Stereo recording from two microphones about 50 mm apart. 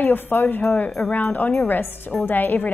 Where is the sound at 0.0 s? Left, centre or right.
Left.